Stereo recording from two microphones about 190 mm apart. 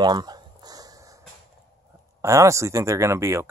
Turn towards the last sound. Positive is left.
turn(degrees=-15)  # may be behind; listen again after turning